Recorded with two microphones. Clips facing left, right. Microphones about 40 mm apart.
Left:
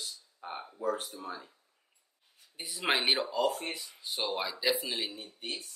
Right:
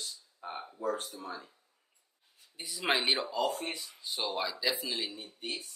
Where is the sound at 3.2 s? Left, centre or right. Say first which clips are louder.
Left 2 dB; centre.